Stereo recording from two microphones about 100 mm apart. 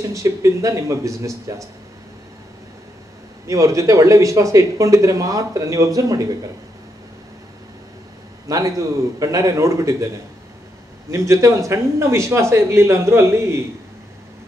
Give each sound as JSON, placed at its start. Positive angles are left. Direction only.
{"t": 0.1, "sound": "speech", "side_deg": -30}
{"t": 3.4, "sound": "speech", "side_deg": -30}
{"t": 8.5, "sound": "speech", "side_deg": -35}
{"t": 11.1, "sound": "speech", "side_deg": -30}